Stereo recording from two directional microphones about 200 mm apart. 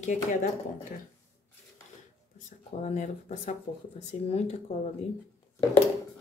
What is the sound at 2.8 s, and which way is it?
Speech, 35° left (ahead or behind).